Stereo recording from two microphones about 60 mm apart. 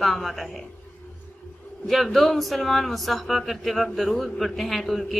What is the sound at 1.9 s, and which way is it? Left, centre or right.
Speech, centre.